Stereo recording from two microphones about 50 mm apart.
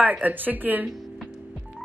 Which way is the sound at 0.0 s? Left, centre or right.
Right.